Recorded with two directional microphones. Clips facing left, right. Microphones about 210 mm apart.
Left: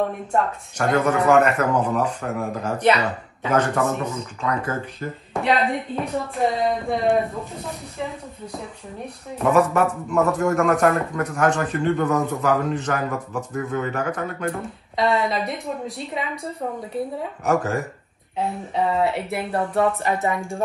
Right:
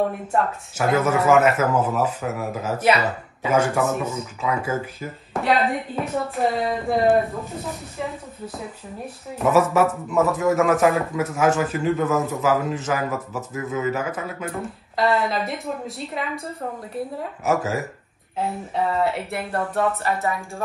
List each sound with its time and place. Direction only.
0.3 s a man's voice: 5° right (ahead or behind)
20.0 s speech: 15° left (ahead or behind)